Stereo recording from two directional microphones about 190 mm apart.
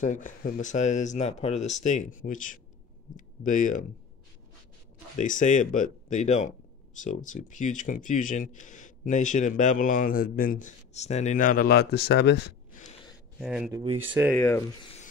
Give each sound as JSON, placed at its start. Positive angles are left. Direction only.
{"t": 0.0, "sound": "speech", "side_deg": 45}
{"t": 5.1, "sound": "speech", "side_deg": 40}
{"t": 12.7, "sound": "a sound", "side_deg": 45}
{"t": 13.4, "sound": "speech", "side_deg": -5}
{"t": 14.3, "sound": "speech", "side_deg": 10}